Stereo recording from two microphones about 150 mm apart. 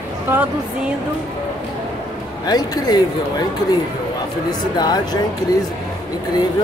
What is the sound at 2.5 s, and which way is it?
Speech, 25° left (ahead or behind).